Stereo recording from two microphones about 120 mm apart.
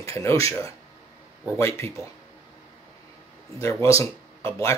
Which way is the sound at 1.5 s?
20° left (ahead or behind).